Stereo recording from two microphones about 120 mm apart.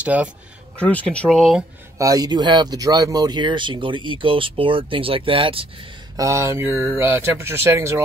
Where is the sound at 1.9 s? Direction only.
30° right (ahead or behind); by 5.8 s 50° right (ahead or behind).